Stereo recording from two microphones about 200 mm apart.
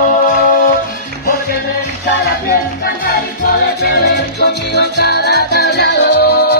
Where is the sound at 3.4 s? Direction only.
50° left (ahead or behind).